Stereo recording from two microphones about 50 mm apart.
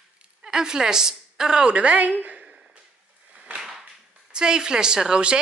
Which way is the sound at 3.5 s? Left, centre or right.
Centre.